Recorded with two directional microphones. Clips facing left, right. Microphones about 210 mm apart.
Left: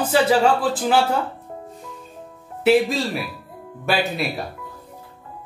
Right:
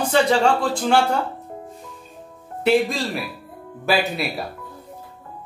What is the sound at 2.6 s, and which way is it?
A man's voice, centre (ahead or behind).